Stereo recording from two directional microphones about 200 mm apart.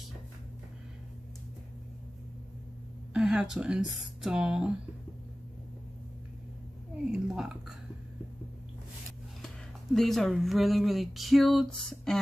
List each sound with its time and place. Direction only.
3.1 s speech: 5° right (ahead or behind)
7.1 s speech: centre (ahead or behind)
9.9 s speech: centre (ahead or behind)